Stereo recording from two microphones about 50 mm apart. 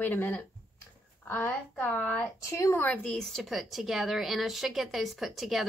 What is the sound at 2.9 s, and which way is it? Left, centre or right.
Speech, left.